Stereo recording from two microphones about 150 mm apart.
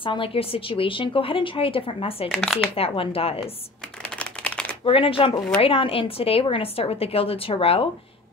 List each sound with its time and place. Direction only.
0.0 s a woman's voice: 35° left (ahead or behind)
2.2 s speech: centre (ahead or behind)
2.9 s a woman's voice: 40° left (ahead or behind)
4.0 s a sound: 10° left (ahead or behind)
4.8 s a woman's voice: 35° left (ahead or behind)